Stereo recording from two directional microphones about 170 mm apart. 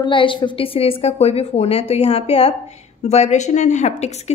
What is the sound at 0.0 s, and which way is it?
A woman's voice, 30° left (ahead or behind).